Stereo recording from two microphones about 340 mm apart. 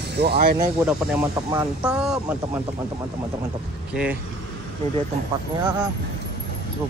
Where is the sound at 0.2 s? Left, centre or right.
Right.